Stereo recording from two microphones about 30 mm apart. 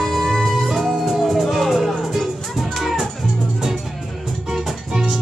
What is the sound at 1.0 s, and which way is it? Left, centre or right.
Music, centre.